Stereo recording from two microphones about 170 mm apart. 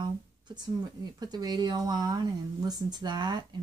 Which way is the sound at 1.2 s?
25° right (ahead or behind).